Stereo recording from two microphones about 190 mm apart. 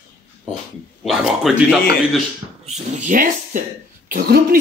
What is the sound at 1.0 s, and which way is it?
Speech, centre (ahead or behind).